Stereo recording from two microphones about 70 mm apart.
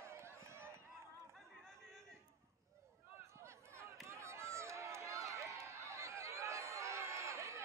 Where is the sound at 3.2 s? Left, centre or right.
Right.